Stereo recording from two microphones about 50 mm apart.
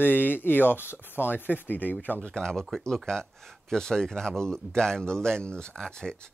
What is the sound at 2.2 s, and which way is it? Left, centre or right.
Speech, centre.